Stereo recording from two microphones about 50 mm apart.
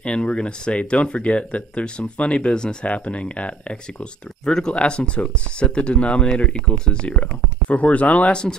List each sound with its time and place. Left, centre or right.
0.0 s speech: left